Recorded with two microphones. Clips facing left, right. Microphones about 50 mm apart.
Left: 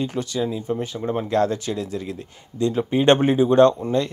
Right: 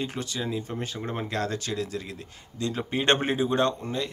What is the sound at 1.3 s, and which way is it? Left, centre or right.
Speech, left.